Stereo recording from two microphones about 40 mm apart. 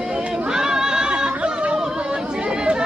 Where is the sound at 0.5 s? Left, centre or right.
Centre.